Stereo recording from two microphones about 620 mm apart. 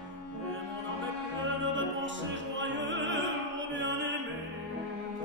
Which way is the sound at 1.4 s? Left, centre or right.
Centre.